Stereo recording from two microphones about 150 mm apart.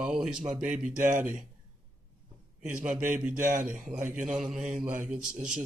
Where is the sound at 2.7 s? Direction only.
55° right (ahead or behind).